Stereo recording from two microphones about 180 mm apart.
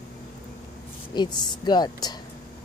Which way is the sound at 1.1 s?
25° left (ahead or behind).